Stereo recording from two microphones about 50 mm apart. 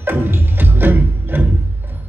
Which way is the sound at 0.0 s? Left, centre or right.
Right.